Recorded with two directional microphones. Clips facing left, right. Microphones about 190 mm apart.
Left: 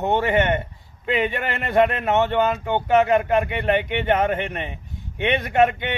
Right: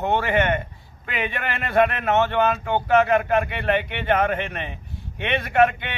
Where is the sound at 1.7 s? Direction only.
20° left (ahead or behind).